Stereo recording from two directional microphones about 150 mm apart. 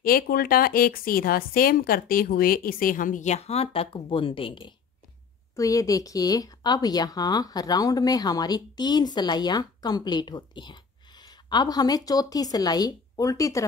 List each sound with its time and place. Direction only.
0.0 s speech: 80° left; by 4.7 s 35° left (ahead or behind)
5.6 s speech: 20° left (ahead or behind)